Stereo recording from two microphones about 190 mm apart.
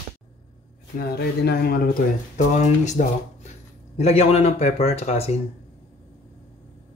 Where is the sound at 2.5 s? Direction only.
40° left (ahead or behind).